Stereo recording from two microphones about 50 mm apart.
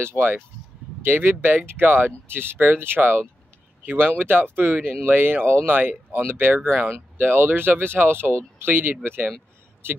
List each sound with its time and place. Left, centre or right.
0.0 s speech: right
1.0 s speech: right
6.9 s speech: right